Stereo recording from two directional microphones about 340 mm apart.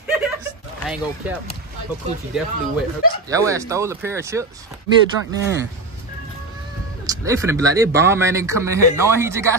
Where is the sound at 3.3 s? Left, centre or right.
Centre.